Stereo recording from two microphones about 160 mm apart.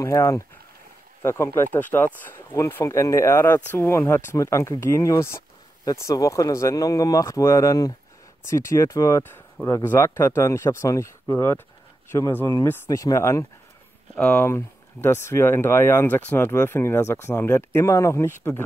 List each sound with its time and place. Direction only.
0.0 s speech: 20° left (ahead or behind)